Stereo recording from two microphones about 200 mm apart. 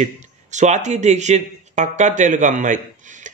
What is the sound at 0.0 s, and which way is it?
Speech, 35° right (ahead or behind).